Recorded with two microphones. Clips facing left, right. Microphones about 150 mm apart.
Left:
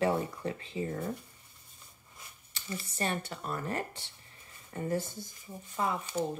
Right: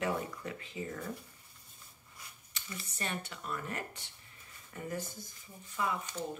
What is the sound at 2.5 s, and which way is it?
Speech, 30° left (ahead or behind).